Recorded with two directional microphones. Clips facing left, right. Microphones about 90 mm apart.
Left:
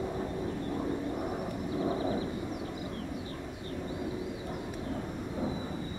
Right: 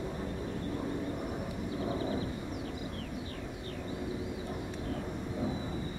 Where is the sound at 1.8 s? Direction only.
20° left (ahead or behind).